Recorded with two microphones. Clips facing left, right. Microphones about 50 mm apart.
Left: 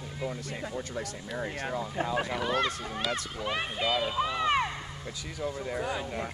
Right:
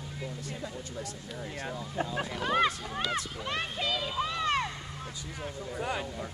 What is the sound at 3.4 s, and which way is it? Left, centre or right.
A child's voice, centre.